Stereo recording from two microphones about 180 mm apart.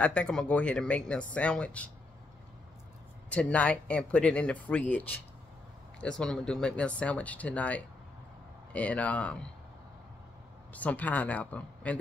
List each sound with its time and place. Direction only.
0.0 s speech: 5° left (ahead or behind)
3.3 s speech: 5° left (ahead or behind)
10.7 s speech: 10° left (ahead or behind)